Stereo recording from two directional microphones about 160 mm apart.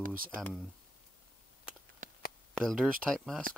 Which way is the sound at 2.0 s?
55° right (ahead or behind).